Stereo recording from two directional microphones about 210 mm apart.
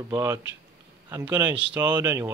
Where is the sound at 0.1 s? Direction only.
15° right (ahead or behind).